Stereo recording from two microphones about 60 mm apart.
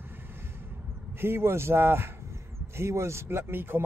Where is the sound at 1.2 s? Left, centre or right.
Right.